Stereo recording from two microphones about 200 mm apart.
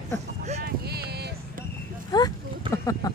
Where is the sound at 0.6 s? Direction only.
55° right (ahead or behind).